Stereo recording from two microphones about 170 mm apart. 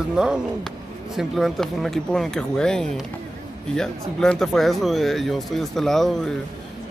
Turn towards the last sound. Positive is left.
turn(degrees=0)  # may be behind; listen again after turning